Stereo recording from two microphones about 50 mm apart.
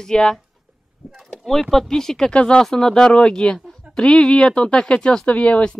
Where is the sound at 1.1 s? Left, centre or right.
Centre.